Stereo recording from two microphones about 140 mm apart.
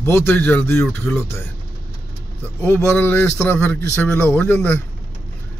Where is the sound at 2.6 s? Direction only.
15° left (ahead or behind).